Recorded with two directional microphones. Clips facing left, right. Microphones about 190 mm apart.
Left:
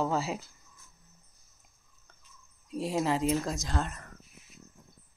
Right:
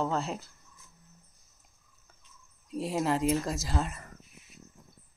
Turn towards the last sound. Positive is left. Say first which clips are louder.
# right 1 dB
turn(degrees=-5)  # may be behind; listen again after turning